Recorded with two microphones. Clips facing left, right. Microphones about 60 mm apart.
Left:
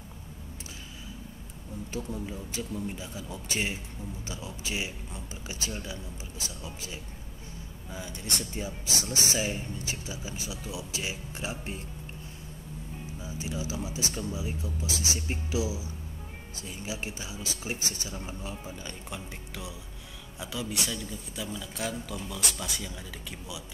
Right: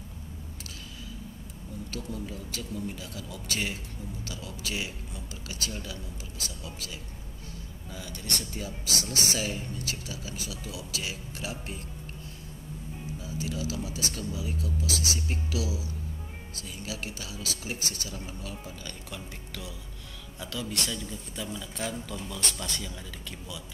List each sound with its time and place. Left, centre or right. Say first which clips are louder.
1.9 s speech: left 2 dB; centre
13.2 s speech: right 1 dB; left; by 22.9 s centre